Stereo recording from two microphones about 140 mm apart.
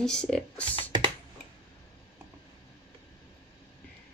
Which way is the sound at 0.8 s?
35° right (ahead or behind).